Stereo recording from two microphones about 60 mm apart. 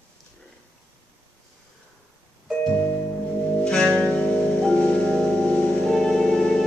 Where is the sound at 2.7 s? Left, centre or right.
Left.